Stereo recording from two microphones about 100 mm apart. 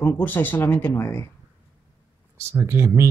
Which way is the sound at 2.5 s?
25° right (ahead or behind).